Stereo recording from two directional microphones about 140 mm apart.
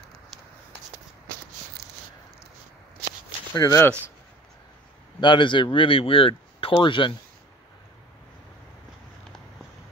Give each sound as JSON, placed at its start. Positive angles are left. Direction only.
{"t": 3.5, "sound": "speech", "side_deg": 25}
{"t": 5.2, "sound": "speech", "side_deg": 35}